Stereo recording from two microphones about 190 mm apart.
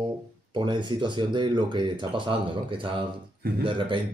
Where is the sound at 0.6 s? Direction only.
25° right (ahead or behind).